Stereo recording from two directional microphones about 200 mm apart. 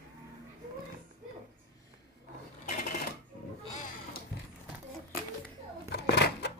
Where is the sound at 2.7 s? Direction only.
40° left (ahead or behind).